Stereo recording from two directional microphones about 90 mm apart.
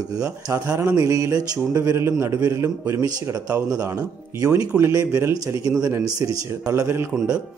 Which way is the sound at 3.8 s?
40° right (ahead or behind).